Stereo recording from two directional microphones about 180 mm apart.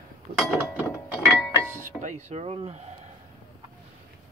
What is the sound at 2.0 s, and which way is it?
Speech, 40° right (ahead or behind).